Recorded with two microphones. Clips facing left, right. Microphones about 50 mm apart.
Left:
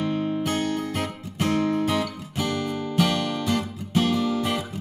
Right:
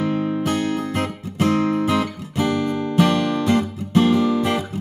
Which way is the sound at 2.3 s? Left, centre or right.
Centre.